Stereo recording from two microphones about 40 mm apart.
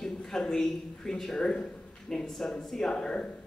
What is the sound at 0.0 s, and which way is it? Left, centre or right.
A man's voice, centre.